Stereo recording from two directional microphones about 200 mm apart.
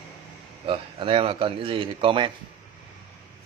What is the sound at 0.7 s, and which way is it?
Speech, 25° right (ahead or behind).